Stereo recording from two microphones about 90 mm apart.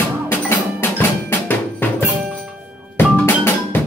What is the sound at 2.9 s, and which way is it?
Percussion, 25° left (ahead or behind).